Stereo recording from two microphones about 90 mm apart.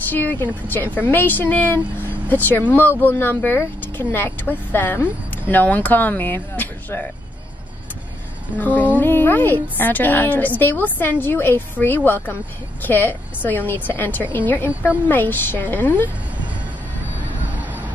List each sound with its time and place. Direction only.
0.1 s a woman's voice: 20° left (ahead or behind)
8.5 s a woman's voice: 20° left (ahead or behind)